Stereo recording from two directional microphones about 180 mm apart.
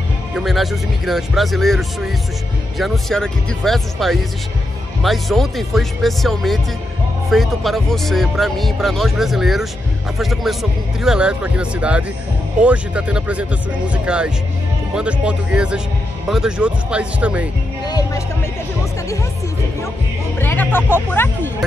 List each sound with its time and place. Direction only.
0.3 s speech: centre (ahead or behind)
17.8 s speech: 20° left (ahead or behind)
20.3 s speech: 10° left (ahead or behind)